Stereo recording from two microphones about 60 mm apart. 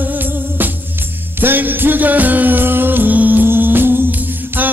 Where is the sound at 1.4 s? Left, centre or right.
Right.